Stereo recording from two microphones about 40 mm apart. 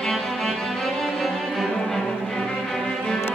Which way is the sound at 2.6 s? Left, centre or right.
Centre.